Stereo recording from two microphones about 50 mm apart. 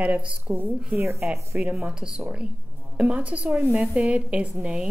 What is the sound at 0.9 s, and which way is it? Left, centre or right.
Speech, right.